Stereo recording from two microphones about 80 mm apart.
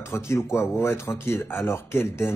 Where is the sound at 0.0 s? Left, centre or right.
Left.